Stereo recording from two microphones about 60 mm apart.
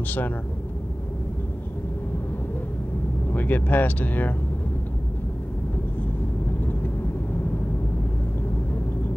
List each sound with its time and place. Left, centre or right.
0.0 s speech: left
3.3 s speech: left
6.6 s vehicle: left